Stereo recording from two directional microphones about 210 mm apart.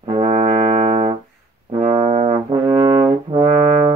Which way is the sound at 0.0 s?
25° right (ahead or behind).